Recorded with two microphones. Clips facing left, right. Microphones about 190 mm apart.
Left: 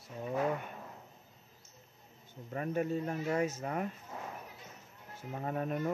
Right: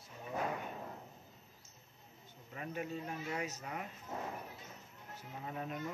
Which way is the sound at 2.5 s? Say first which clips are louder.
Left 8 dB; 45° left (ahead or behind).